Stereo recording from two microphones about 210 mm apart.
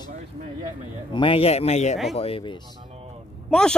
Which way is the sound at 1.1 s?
25° left (ahead or behind).